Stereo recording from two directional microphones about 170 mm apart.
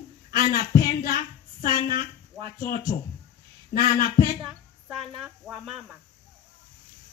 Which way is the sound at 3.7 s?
50° left (ahead or behind).